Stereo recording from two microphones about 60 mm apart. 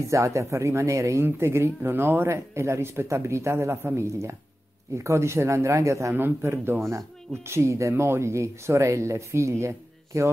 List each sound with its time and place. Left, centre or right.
0.1 s speech: right
1.2 s speech: right
6.1 s a man's voice: right